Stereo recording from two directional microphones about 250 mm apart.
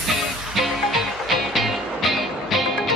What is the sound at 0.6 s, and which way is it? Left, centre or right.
Music, centre.